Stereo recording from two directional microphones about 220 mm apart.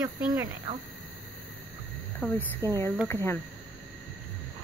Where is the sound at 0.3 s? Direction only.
20° right (ahead or behind).